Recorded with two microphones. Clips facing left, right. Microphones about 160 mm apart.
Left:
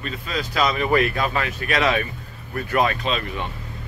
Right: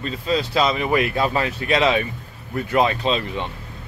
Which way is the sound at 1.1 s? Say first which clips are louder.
Right 3 dB; 30° right (ahead or behind).